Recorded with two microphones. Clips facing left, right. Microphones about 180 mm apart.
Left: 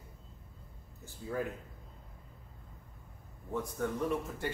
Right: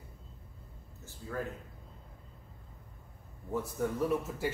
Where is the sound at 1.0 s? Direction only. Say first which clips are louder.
Left 2 dB; 15° left (ahead or behind).